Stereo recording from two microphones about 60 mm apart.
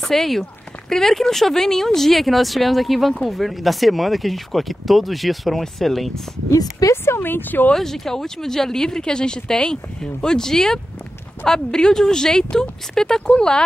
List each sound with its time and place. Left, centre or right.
0.0 s speech: centre
6.5 s speech: left
6.9 s speech: left
7.7 s speech: centre